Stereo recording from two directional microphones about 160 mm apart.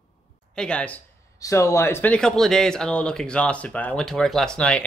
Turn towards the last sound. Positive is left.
turn(degrees=5)  # may be behind; listen again after turning